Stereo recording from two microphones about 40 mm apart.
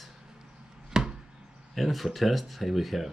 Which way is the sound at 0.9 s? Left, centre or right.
Centre.